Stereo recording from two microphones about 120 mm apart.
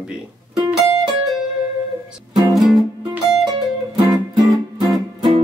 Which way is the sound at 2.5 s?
Centre (ahead or behind).